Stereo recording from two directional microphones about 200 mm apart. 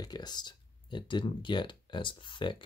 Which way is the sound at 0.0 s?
20° left (ahead or behind).